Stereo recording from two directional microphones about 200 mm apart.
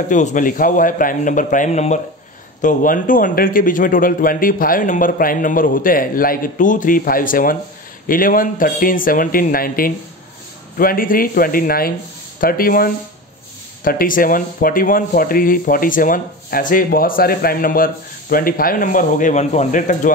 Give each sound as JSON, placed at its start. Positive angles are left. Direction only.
{"t": 0.1, "sound": "a man's voice", "side_deg": 40}